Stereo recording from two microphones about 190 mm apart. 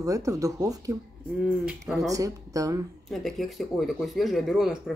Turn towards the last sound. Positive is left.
turn(degrees=0)  # may be behind; listen again after turning